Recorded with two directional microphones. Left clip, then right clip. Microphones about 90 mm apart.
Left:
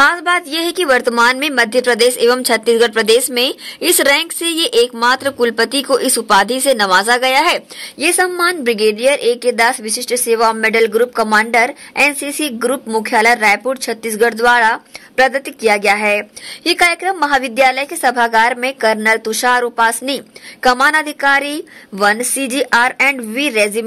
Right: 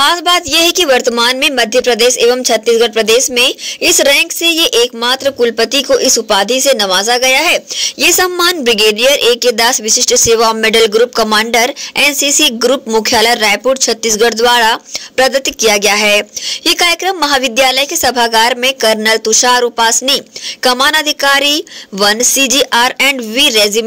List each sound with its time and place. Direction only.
0.0 s a woman's voice: 20° right (ahead or behind)
0.5 s a woman's voice: 5° right (ahead or behind)
7.8 s a woman's voice: 20° right (ahead or behind)